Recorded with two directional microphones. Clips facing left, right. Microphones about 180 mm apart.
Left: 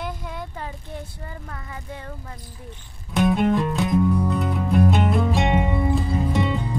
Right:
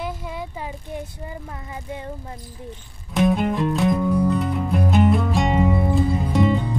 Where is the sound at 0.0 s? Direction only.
5° right (ahead or behind).